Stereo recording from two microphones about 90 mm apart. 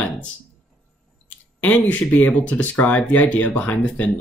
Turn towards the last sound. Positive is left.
turn(degrees=15)  # may be behind; listen again after turning